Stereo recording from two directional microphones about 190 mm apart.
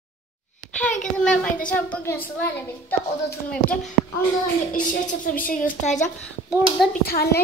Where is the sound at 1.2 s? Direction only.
5° left (ahead or behind).